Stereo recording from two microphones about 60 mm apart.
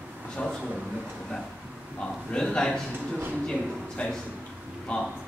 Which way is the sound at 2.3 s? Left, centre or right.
Centre.